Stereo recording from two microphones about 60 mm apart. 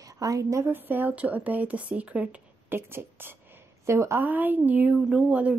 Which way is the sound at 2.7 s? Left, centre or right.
Right.